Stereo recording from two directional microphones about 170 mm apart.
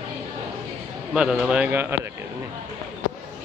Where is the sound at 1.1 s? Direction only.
5° right (ahead or behind).